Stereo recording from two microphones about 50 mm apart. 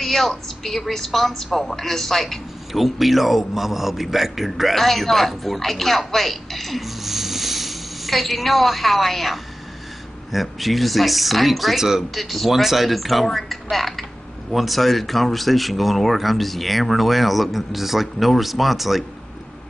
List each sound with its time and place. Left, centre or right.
0.0 s a man's voice: centre